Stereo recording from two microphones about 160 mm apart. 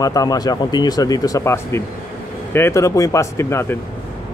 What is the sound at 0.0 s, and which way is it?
A man's voice, 20° left (ahead or behind).